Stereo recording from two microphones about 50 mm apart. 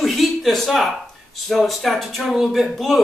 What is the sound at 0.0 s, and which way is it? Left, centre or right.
Speech, centre.